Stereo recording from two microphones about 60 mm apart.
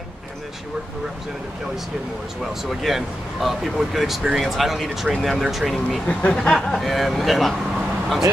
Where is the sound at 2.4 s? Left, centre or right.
Centre.